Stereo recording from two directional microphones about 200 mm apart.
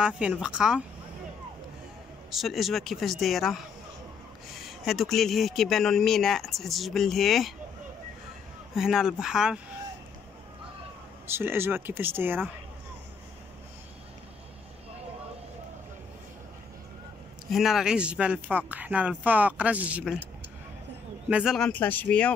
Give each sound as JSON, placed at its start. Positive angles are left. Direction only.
{"t": 0.0, "sound": "speech", "side_deg": -5}
{"t": 2.3, "sound": "speech", "side_deg": 0}
{"t": 8.7, "sound": "speech", "side_deg": 0}
{"t": 11.2, "sound": "speech", "side_deg": -10}
{"t": 17.5, "sound": "speech", "side_deg": 0}
{"t": 21.3, "sound": "speech", "side_deg": -5}